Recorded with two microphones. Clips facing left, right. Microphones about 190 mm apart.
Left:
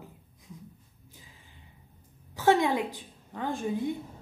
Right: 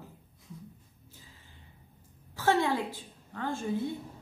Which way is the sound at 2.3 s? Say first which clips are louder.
Left 3 dB; 15° left (ahead or behind).